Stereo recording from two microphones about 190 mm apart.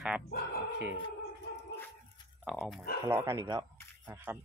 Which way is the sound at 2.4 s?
5° right (ahead or behind).